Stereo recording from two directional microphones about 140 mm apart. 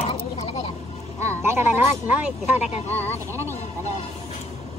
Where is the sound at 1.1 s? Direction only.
20° right (ahead or behind).